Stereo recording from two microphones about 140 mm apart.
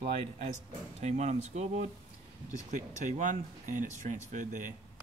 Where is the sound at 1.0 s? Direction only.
55° right (ahead or behind).